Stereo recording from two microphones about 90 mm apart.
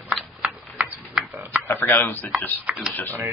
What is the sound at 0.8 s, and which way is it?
Oink, 20° right (ahead or behind).